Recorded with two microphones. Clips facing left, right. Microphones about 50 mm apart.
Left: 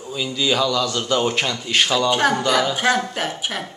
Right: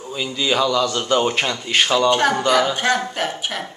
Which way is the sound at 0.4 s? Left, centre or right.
Centre.